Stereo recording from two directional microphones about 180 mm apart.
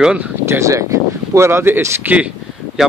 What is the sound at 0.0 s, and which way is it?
Speech, 5° right (ahead or behind).